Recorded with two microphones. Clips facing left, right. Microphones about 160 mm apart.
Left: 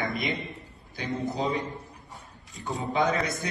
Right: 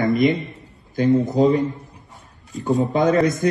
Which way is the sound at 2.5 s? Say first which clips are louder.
Right 14 dB; 70° right (ahead or behind).